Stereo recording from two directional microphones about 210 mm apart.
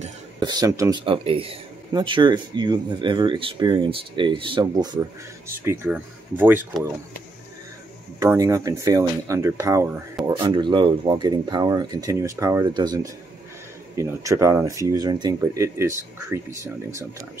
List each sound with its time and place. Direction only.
0.4 s speech: 20° right (ahead or behind)
8.2 s speech: 15° right (ahead or behind)